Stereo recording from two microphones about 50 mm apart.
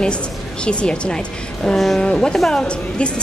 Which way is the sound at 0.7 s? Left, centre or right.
Left.